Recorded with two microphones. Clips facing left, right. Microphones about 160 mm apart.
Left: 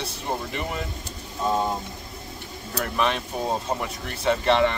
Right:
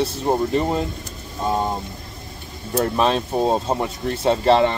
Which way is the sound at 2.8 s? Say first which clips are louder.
Right 6 dB; 30° right (ahead or behind).